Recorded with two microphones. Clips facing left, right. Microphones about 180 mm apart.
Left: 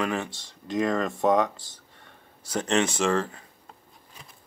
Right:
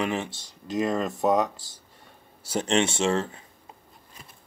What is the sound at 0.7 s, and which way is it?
Speech, 5° right (ahead or behind).